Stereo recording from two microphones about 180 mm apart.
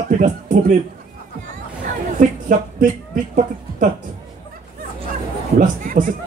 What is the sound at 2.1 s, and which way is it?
Speech, 50° right (ahead or behind).